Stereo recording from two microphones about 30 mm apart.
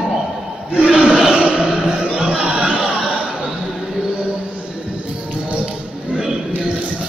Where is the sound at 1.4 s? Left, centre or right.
Right.